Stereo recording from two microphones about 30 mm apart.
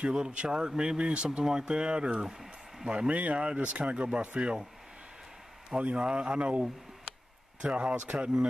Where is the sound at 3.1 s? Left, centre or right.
Right.